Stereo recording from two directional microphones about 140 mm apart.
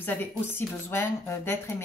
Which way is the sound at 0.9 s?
20° left (ahead or behind).